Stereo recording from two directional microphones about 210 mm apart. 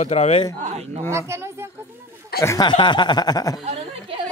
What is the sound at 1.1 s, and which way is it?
Speech, 10° right (ahead or behind).